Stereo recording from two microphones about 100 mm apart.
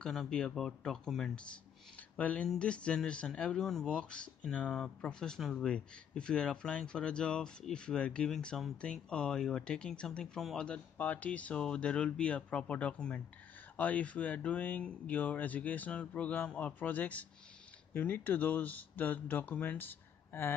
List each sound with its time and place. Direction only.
0.0 s speech: 5° left (ahead or behind); by 20.5 s 20° left (ahead or behind)